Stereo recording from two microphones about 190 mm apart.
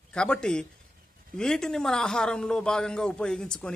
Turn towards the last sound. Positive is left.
turn(degrees=5)  # may be behind; listen again after turning